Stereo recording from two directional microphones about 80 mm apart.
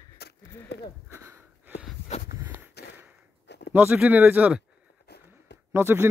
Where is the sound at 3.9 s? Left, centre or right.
Right.